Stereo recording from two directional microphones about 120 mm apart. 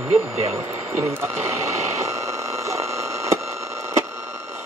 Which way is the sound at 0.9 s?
20° right (ahead or behind).